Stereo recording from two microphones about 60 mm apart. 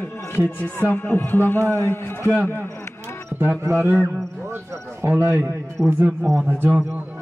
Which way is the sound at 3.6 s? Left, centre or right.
Right.